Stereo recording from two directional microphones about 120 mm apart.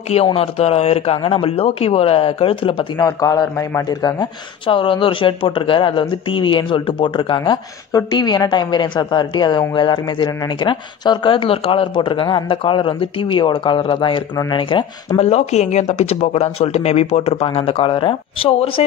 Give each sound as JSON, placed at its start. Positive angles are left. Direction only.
{"t": 0.1, "sound": "speech", "side_deg": 55}
{"t": 3.0, "sound": "a man's voice", "side_deg": 30}
{"t": 4.2, "sound": "speech", "side_deg": 45}
{"t": 15.1, "sound": "speech", "side_deg": 65}